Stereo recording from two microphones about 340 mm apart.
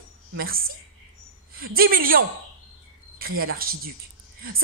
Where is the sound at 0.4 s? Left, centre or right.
Right.